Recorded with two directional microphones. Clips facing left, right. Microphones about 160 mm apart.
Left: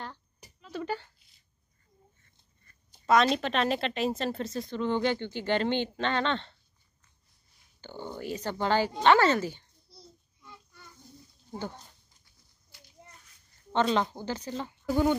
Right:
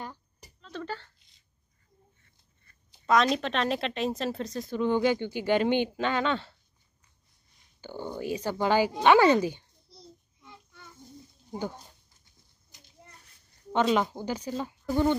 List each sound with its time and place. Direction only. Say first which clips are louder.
0.4 s a sound: left 2 dB; 10° left (ahead or behind)
3.3 s speech: even; centre (ahead or behind)
4.7 s speech: right 3 dB; 10° right (ahead or behind)
7.8 s speech: right 3 dB; 15° right (ahead or behind)
11.5 s speech: right 3 dB; 10° right (ahead or behind)
12.7 s a sound: left 1 dB; 20° right (ahead or behind)
13.8 s speech: right 2 dB; 10° right (ahead or behind)
14.9 s speech: even; 10° left (ahead or behind)